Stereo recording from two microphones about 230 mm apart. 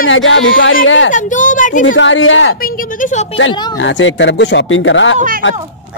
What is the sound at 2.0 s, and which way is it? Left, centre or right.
Speech, left.